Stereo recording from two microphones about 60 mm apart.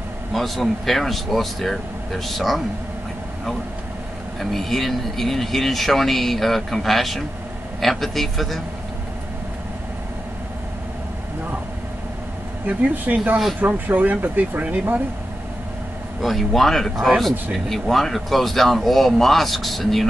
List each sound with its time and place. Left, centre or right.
0.3 s speech: centre
4.4 s speech: centre
12.6 s speech: right
16.2 s speech: centre